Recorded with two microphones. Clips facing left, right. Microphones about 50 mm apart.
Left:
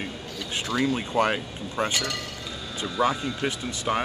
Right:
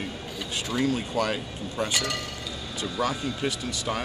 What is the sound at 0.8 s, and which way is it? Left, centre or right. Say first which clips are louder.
Speech: left 2 dB; left.